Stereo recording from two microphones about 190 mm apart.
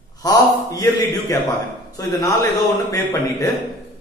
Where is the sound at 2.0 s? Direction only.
15° left (ahead or behind).